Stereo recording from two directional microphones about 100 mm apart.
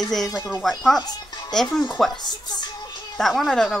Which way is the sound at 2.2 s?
45° left (ahead or behind).